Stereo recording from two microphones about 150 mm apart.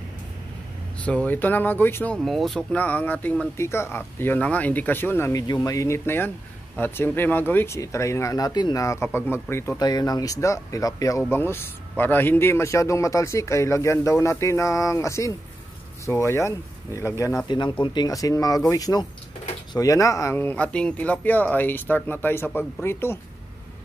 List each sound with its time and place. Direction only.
1.0 s speech: 10° left (ahead or behind)
2.1 s speech: centre (ahead or behind); by 17.3 s 20° left (ahead or behind)
17.5 s speech: 30° left (ahead or behind); by 23.1 s 15° left (ahead or behind)